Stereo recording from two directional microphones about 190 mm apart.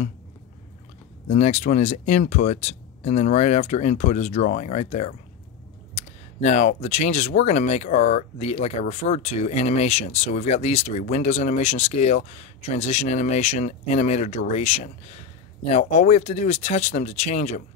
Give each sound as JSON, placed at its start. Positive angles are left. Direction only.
{"t": 1.3, "sound": "speech", "side_deg": 35}